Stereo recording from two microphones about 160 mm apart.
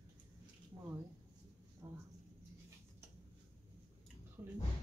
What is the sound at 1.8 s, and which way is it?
Speech, 20° right (ahead or behind).